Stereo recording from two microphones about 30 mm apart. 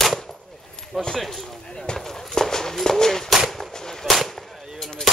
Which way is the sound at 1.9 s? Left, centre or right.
Centre.